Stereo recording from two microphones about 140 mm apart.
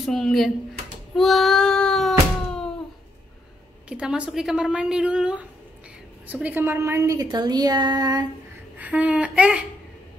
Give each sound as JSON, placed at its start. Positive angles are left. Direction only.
{"t": 0.0, "sound": "a woman's voice", "side_deg": 0}
{"t": 1.1, "sound": "cat", "side_deg": 0}
{"t": 3.9, "sound": "a woman's voice", "side_deg": -5}
{"t": 8.7, "sound": "speech", "side_deg": -10}